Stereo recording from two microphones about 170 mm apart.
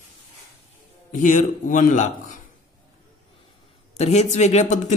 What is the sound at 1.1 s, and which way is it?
Mantra, 50° left (ahead or behind).